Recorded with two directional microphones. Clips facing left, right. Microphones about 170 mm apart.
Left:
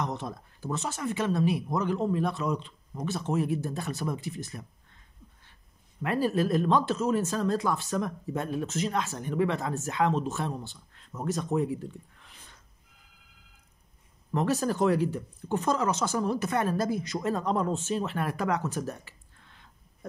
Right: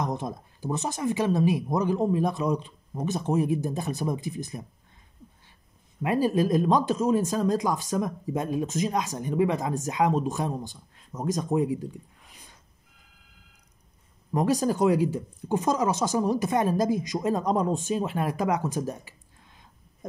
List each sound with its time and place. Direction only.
0.0 s speech: 15° right (ahead or behind)
6.0 s speech: 15° right (ahead or behind)
14.3 s speech: 15° right (ahead or behind)